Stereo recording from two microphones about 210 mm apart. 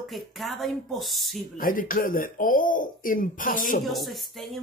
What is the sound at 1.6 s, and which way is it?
A man's voice, 40° left (ahead or behind).